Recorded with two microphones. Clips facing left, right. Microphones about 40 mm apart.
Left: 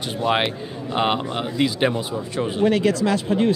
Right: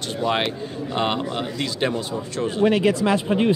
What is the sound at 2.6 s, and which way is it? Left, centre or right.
Speech, centre.